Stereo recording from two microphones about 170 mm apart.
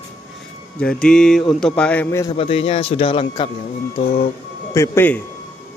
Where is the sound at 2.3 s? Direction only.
35° left (ahead or behind).